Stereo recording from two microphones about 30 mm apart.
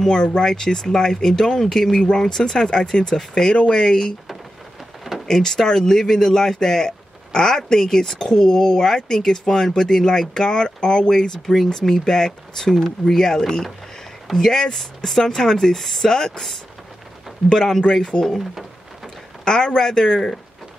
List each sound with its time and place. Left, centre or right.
0.2 s speech: left
5.3 s speech: centre
17.5 s speech: left
18.4 s speech: centre
19.4 s speech: left